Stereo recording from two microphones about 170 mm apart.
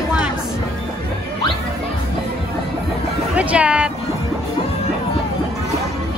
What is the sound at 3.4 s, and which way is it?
Music, 10° right (ahead or behind).